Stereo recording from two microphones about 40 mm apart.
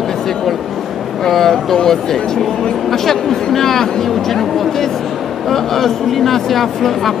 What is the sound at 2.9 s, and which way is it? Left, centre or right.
Speech, centre.